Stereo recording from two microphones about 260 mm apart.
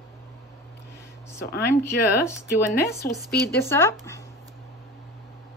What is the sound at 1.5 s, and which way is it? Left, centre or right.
Speech, left.